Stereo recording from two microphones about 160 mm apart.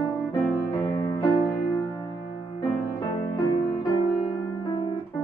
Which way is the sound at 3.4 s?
30° left (ahead or behind).